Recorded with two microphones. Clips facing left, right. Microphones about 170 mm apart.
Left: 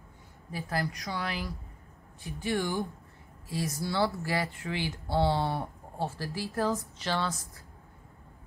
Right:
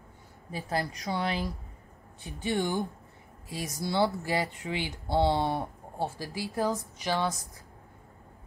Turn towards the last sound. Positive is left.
turn(degrees=-15)  # may be behind; listen again after turning